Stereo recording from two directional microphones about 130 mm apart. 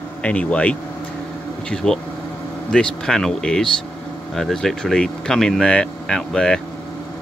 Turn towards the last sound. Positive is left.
turn(degrees=5)  # may be behind; listen again after turning